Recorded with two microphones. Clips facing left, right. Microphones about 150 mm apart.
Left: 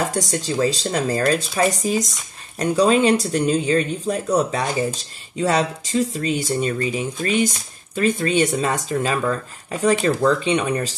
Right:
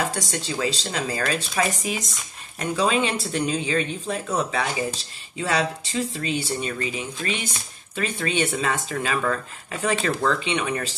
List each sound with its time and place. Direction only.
0.1 s speech: 40° left (ahead or behind)